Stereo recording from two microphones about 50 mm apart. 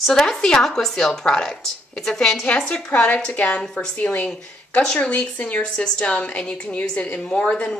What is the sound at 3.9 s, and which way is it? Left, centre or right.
A woman's voice, left.